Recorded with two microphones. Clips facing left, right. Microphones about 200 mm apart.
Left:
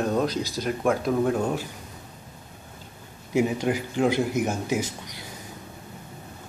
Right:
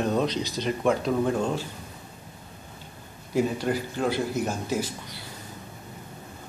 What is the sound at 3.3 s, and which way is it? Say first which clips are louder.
Speech: left 2 dB; 15° left (ahead or behind).